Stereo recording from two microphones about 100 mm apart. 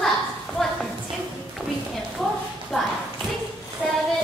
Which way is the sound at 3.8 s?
5° right (ahead or behind).